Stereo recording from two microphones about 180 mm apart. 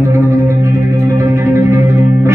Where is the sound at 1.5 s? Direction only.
15° right (ahead or behind).